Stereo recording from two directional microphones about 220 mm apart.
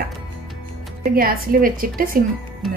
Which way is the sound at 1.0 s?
40° right (ahead or behind).